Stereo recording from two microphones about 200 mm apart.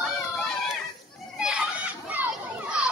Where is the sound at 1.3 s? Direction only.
5° right (ahead or behind).